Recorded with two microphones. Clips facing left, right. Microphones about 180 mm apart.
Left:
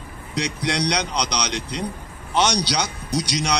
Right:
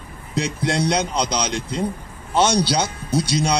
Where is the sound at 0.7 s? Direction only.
25° right (ahead or behind).